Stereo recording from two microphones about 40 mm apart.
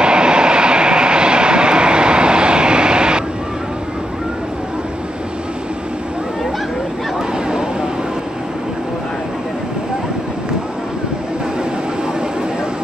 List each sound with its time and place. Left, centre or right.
0.0 s vehicle: right